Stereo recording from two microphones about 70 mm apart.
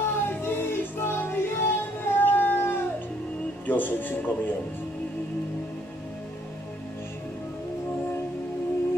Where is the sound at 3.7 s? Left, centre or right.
Left.